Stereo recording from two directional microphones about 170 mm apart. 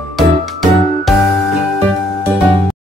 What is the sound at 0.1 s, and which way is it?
Music, centre (ahead or behind).